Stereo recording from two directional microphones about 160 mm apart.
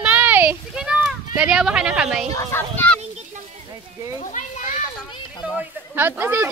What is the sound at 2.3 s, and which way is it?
Speech, 15° left (ahead or behind).